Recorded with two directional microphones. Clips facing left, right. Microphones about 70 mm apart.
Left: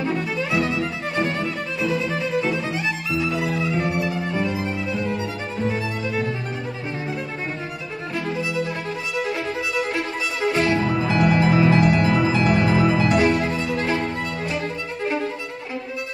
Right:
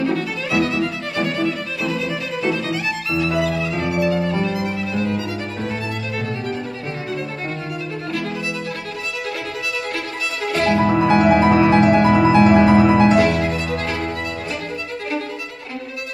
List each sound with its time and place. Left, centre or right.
0.0 s music: left
10.4 s music: centre
10.8 s music: right
13.5 s music: left